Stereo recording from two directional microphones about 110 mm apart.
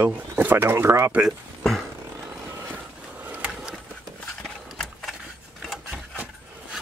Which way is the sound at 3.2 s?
15° right (ahead or behind).